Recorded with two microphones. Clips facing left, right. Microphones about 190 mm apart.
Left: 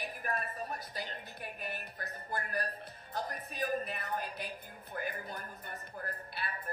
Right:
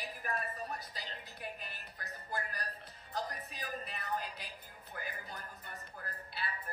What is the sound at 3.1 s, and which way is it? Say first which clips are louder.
Music: left 3 dB; 55° left (ahead or behind).